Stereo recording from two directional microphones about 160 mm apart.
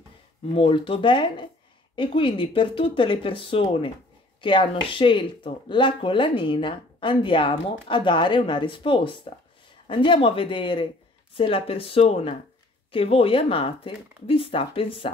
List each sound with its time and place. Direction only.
0.6 s speech: 35° left (ahead or behind)